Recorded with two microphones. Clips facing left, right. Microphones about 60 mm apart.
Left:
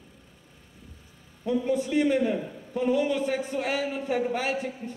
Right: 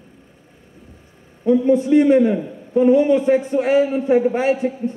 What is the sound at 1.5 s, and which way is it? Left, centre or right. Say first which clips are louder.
A man's voice: right 11 dB; right.